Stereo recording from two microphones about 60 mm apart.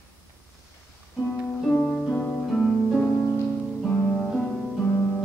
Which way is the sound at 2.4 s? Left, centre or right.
Centre.